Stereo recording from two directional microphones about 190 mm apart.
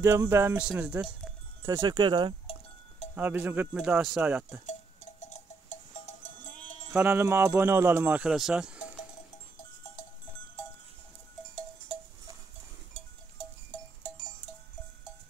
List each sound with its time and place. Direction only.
0.0 s speech: 15° right (ahead or behind)
1.7 s speech: 20° right (ahead or behind)
3.2 s speech: 10° right (ahead or behind)
4.6 s a sound: 40° left (ahead or behind)
6.9 s speech: 10° right (ahead or behind)